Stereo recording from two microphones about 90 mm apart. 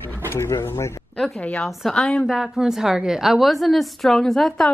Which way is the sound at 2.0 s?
10° left (ahead or behind).